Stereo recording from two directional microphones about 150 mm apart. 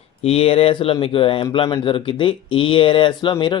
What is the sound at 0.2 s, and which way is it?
Speech, 40° left (ahead or behind).